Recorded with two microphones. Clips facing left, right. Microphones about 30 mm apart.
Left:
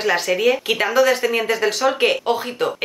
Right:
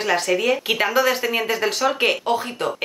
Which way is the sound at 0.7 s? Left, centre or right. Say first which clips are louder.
Left 2 dB; centre.